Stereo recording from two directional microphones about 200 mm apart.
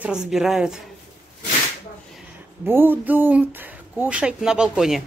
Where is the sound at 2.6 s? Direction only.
10° right (ahead or behind).